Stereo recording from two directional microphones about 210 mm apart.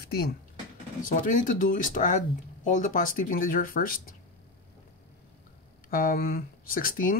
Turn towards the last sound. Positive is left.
turn(degrees=40)  # may be behind; listen again after turning